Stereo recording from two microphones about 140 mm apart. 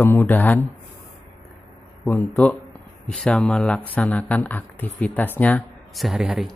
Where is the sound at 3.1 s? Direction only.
5° left (ahead or behind).